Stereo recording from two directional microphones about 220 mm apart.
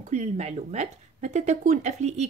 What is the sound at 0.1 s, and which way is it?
A woman's voice, 30° right (ahead or behind).